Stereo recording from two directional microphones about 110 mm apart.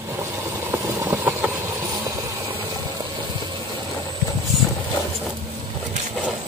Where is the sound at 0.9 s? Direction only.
20° right (ahead or behind).